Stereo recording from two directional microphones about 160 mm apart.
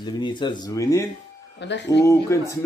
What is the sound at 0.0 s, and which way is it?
A man's voice, 30° left (ahead or behind).